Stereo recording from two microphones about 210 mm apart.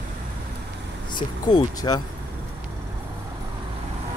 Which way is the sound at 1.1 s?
20° left (ahead or behind).